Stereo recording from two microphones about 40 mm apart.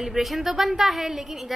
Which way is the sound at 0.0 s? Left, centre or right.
Centre.